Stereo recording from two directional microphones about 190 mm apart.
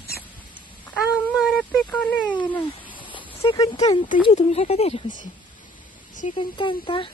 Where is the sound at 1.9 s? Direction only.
5° left (ahead or behind).